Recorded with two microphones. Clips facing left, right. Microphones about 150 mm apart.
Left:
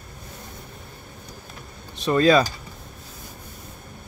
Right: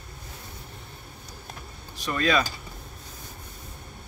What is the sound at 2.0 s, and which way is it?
Speech, 30° left (ahead or behind).